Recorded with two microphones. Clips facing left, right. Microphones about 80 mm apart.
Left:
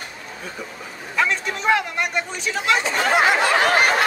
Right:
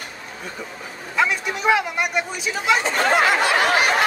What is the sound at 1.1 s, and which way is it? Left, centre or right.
Speech, centre.